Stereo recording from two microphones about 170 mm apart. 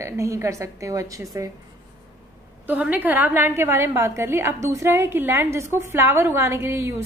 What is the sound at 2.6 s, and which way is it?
A woman's voice, 10° right (ahead or behind).